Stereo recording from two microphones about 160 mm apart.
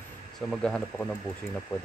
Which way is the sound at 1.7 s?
20° left (ahead or behind).